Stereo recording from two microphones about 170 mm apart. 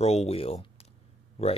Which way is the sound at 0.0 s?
40° left (ahead or behind).